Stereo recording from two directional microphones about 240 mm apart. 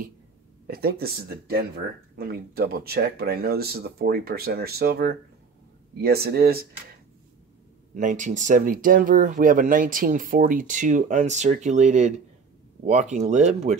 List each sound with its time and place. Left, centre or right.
0.7 s speech: right
7.9 s speech: right